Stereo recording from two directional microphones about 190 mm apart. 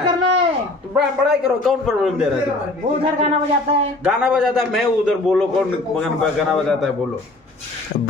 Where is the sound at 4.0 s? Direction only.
5° right (ahead or behind).